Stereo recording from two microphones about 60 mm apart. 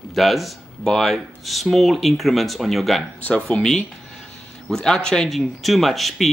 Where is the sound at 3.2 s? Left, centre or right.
Centre.